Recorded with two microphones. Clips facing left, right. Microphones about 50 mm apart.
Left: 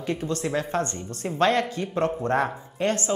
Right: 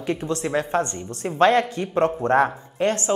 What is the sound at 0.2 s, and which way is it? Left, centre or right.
Speech, right.